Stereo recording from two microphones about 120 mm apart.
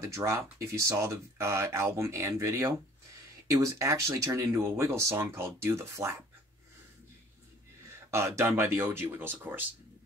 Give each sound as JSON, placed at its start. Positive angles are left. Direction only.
{"t": 0.0, "sound": "speech", "side_deg": -25}
{"t": 8.1, "sound": "speech", "side_deg": -25}